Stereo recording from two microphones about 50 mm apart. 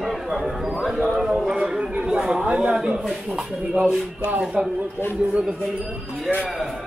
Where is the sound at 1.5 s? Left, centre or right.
Right.